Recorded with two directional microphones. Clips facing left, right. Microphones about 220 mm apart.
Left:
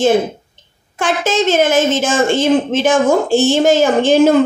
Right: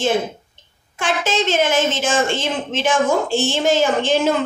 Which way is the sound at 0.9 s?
40° left (ahead or behind).